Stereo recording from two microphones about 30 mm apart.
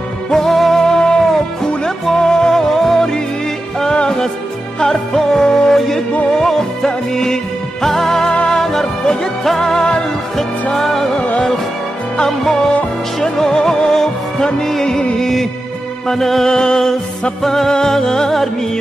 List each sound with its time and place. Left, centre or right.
0.3 s music: centre
1.3 s music: centre
2.1 s music: left
4.8 s music: centre
9.0 s music: left
9.4 s music: centre
13.2 s music: left
16.4 s music: left
17.4 s music: centre